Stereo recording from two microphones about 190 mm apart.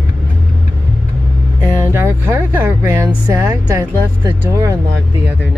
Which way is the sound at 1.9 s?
15° right (ahead or behind).